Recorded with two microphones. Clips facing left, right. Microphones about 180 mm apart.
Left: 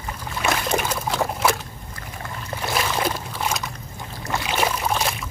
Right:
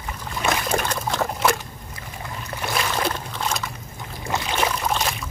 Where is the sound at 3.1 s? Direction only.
5° left (ahead or behind).